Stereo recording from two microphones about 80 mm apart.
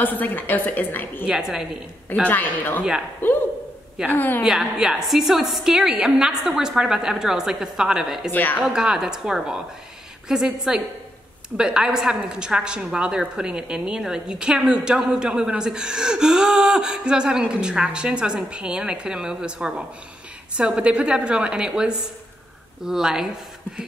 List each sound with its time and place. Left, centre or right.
0.0 s speech: left
1.2 s a woman's voice: centre
2.2 s speech: left
4.4 s a woman's voice: centre
8.3 s speech: left
8.6 s a woman's voice: centre